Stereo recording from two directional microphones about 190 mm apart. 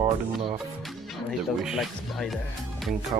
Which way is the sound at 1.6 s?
Centre (ahead or behind).